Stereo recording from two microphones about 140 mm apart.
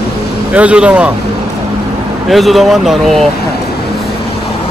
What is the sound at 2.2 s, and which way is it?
Speech, centre (ahead or behind).